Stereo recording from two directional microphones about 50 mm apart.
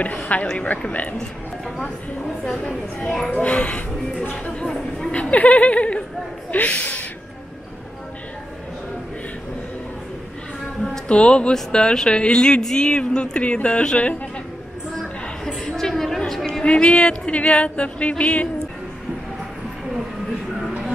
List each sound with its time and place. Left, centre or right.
0.1 s speech: left
2.4 s speech: centre
3.3 s speech: left
4.6 s a sound: centre
5.1 s speech: left
10.8 s music: left
11.7 s speech: centre
15.0 s a sound: centre
16.3 s chatter: centre
16.6 s speech: left